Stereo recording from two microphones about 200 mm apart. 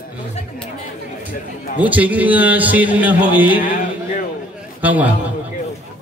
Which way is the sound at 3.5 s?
40° left (ahead or behind).